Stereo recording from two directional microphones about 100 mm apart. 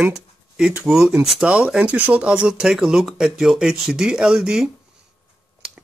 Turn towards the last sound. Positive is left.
turn(degrees=-5)  # may be behind; listen again after turning